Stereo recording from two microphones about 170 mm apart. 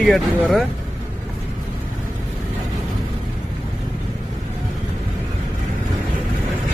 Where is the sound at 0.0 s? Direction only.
5° left (ahead or behind).